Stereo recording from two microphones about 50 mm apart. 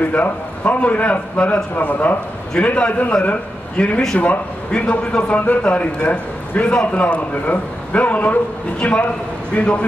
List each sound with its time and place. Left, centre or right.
0.1 s a man's voice: left